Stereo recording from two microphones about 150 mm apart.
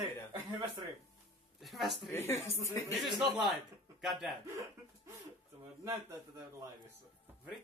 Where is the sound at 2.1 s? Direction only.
15° left (ahead or behind).